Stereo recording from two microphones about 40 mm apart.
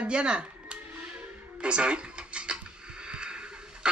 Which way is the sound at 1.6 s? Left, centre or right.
Right.